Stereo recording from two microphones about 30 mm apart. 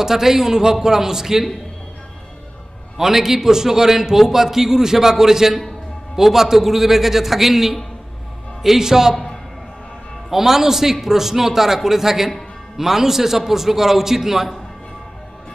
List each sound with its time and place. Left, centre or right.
0.0 s a man's voice: centre
3.0 s a man's voice: centre
8.7 s a man's voice: centre
9.1 s music: centre
10.3 s a man's voice: centre